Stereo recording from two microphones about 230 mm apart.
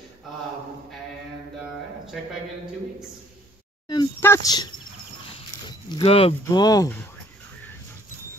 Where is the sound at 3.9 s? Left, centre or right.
Centre.